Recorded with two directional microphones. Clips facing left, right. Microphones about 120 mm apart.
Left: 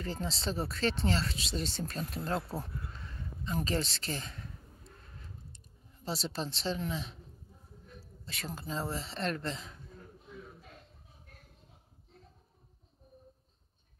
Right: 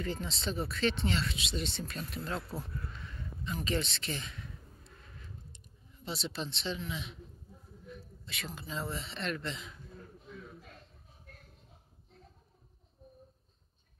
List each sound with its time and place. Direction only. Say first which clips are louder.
0.0 s speech: even; 35° left (ahead or behind)
2.9 s a sound: even; 30° left (ahead or behind)
6.0 s speech: left 2 dB; 40° left (ahead or behind)
8.3 s speech: left 3 dB; 40° left (ahead or behind)